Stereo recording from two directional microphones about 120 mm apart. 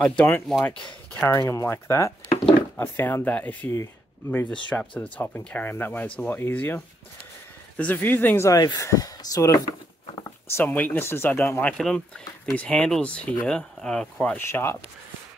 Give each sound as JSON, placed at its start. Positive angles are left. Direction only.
{"t": 0.5, "sound": "speech", "side_deg": 5}
{"t": 1.1, "sound": "speech", "side_deg": 20}
{"t": 4.6, "sound": "speech", "side_deg": 10}
{"t": 8.5, "sound": "speech", "side_deg": 30}
{"t": 10.1, "sound": "a sound", "side_deg": 25}
{"t": 10.6, "sound": "speech", "side_deg": 15}
{"t": 14.4, "sound": "speech", "side_deg": 20}